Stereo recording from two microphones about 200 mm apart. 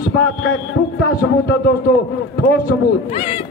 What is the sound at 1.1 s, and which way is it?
Speech, 50° left (ahead or behind).